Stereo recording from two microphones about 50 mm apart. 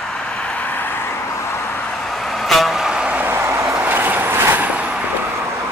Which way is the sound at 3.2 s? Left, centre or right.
Right.